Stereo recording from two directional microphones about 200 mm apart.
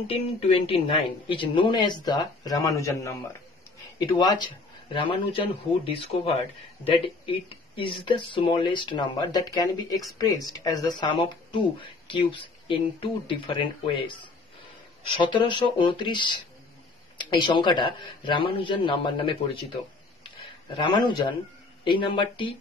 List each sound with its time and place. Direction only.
0.0 s speech: 30° left (ahead or behind)
20.2 s a sound: 25° left (ahead or behind)
21.8 s speech: 25° left (ahead or behind)